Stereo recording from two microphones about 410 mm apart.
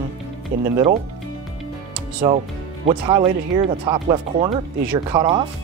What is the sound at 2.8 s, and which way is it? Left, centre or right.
Speech, centre.